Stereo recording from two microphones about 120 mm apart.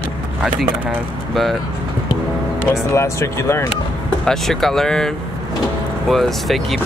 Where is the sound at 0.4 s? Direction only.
Centre (ahead or behind).